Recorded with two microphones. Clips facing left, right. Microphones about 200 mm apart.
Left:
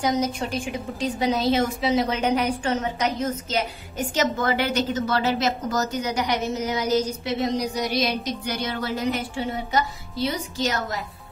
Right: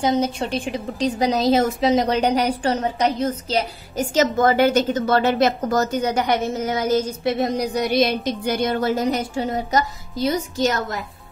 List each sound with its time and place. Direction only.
0.0 s a woman's voice: 30° right (ahead or behind); by 11.0 s 45° right (ahead or behind)